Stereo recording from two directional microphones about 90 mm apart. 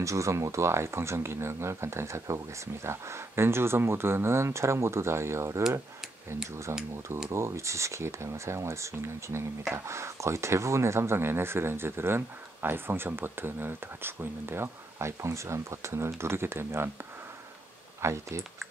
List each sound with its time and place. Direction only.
0.0 s speech: 35° right (ahead or behind)
6.7 s speech: 30° right (ahead or behind)
18.0 s speech: 30° right (ahead or behind)